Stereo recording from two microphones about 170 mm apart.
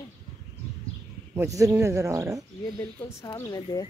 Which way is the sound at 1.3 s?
15° right (ahead or behind).